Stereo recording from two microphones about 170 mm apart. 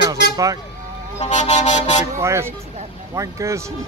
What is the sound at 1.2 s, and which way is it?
Vehicle, 40° left (ahead or behind).